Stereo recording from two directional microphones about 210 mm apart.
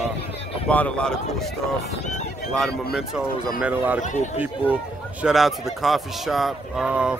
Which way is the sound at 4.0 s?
35° left (ahead or behind).